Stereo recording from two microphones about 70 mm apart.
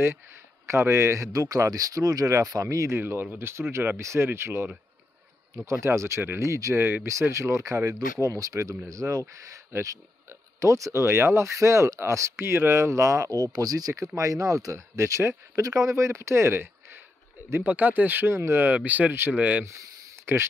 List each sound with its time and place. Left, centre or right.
0.7 s speech: right
3.0 s speech: right
5.7 s speech: right
13.5 s speech: right
17.6 s speech: right
18.9 s speech: right
20.3 s speech: right